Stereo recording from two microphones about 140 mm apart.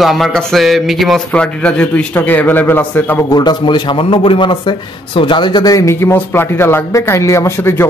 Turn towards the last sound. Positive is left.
turn(degrees=15)  # may be behind; listen again after turning